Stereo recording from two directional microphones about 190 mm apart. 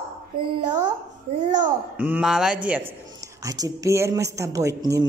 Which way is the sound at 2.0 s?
5° right (ahead or behind).